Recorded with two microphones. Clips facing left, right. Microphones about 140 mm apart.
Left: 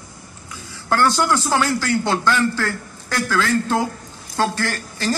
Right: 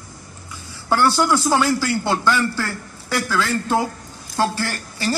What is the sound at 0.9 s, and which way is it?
A man's voice, 10° right (ahead or behind).